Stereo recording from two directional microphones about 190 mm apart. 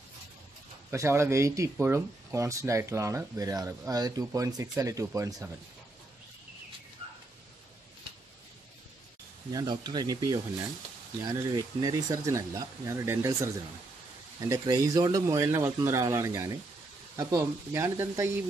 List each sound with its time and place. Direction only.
0.9 s speech: 15° right (ahead or behind)
9.5 s speech: 20° right (ahead or behind)
14.5 s speech: 20° right (ahead or behind)